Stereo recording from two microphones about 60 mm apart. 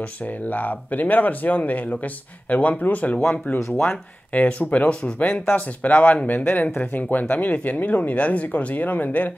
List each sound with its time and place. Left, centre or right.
0.5 s speech: left
5.2 s speech: left
5.8 s speech: left